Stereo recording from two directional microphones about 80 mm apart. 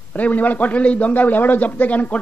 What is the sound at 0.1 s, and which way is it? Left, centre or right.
A woman's voice, left.